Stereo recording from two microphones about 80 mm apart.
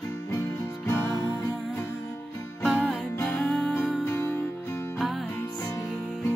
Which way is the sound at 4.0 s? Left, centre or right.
Left.